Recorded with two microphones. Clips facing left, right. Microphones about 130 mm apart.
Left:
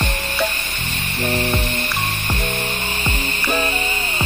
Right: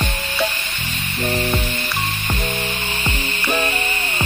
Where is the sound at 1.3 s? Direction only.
10° right (ahead or behind).